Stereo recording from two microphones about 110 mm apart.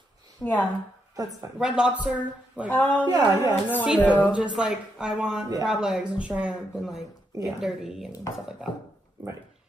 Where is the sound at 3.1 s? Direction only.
35° right (ahead or behind).